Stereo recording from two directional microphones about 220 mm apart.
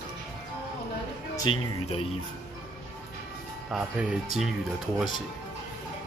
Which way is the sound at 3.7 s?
5° right (ahead or behind).